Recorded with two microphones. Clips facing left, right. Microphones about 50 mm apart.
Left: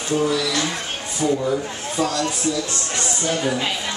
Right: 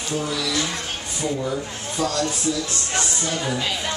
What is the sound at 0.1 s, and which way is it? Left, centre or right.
Speech, centre.